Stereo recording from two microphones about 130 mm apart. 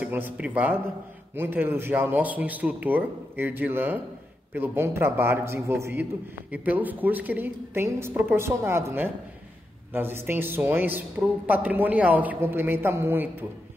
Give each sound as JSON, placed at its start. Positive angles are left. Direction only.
{"t": 0.0, "sound": "a man's voice", "side_deg": -15}